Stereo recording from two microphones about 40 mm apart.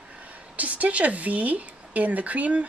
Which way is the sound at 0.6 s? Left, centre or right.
Right.